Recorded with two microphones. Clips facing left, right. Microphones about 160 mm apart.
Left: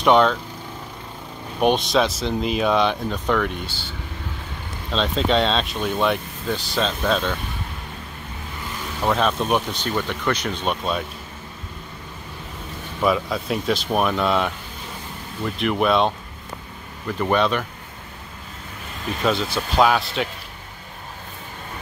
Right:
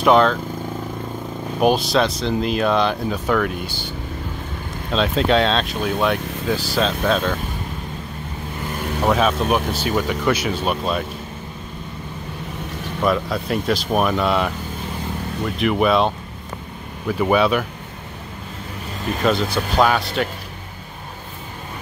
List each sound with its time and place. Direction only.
0.0 s speech: centre (ahead or behind)
1.6 s speech: centre (ahead or behind)
3.6 s speech: 15° right (ahead or behind)
4.9 s speech: 5° right (ahead or behind)
8.7 s vehicle: 55° right (ahead or behind)
9.0 s speech: 5° right (ahead or behind)
13.0 s speech: centre (ahead or behind)
17.2 s speech: 5° right (ahead or behind)
19.2 s speech: centre (ahead or behind)